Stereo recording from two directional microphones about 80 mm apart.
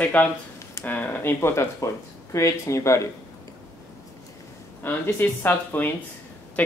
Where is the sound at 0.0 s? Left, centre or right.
Centre.